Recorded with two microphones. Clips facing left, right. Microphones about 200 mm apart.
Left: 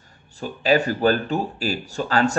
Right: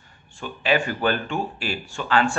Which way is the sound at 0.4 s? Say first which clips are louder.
Left 3 dB; 40° left (ahead or behind).